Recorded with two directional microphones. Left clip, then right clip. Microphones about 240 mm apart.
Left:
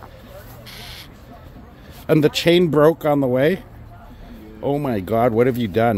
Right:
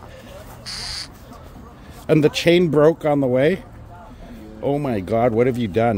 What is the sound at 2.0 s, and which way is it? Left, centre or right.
Speech, centre.